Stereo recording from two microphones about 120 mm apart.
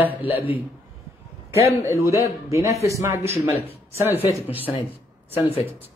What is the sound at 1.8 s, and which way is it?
A man's voice, 25° right (ahead or behind).